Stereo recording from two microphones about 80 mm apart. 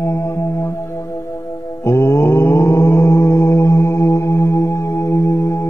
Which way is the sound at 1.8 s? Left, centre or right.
Left.